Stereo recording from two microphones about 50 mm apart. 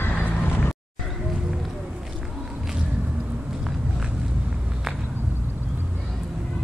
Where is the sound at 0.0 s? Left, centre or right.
Left.